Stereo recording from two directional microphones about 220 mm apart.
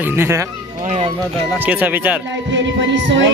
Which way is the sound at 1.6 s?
5° right (ahead or behind).